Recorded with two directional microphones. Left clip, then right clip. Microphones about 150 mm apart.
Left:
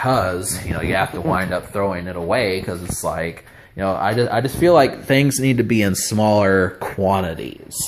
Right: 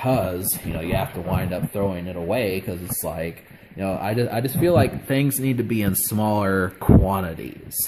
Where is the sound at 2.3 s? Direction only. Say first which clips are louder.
Left 5 dB; 30° right (ahead or behind).